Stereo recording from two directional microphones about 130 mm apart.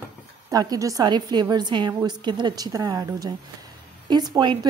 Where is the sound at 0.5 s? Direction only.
30° right (ahead or behind).